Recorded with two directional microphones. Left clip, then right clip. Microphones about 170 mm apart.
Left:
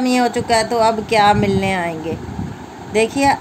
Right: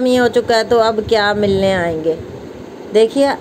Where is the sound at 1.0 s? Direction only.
30° left (ahead or behind).